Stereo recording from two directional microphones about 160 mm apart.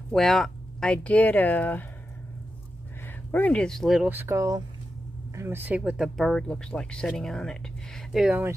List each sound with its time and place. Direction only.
0.1 s speech: centre (ahead or behind)
3.3 s speech: 10° left (ahead or behind)
4.1 s speech: 15° right (ahead or behind)